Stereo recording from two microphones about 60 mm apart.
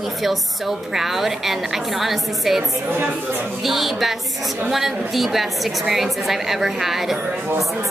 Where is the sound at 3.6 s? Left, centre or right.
Centre.